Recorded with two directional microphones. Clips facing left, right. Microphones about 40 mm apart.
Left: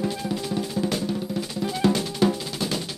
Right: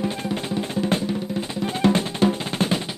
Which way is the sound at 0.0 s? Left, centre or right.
Right.